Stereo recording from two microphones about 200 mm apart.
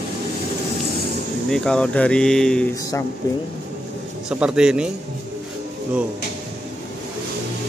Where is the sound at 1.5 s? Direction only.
5° left (ahead or behind).